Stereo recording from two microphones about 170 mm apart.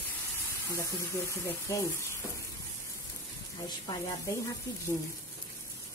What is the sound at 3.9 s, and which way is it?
A woman's voice, 20° left (ahead or behind).